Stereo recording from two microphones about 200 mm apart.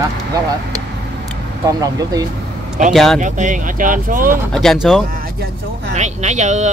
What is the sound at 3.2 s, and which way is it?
Speech, 40° right (ahead or behind).